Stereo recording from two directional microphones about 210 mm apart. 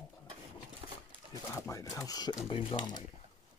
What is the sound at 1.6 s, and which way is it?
Speech, 15° left (ahead or behind).